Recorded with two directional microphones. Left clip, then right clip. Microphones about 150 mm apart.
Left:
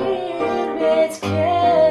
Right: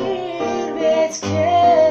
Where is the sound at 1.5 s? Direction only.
50° right (ahead or behind).